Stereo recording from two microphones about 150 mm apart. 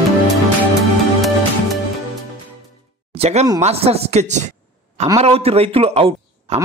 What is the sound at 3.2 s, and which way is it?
A man's voice, 45° right (ahead or behind).